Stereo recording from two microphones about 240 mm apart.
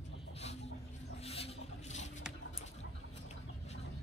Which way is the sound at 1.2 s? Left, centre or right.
Left.